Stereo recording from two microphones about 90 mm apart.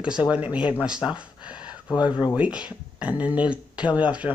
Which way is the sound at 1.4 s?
10° right (ahead or behind).